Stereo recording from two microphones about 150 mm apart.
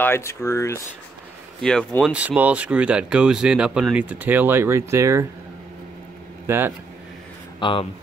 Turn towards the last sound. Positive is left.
turn(degrees=35)  # may be behind; listen again after turning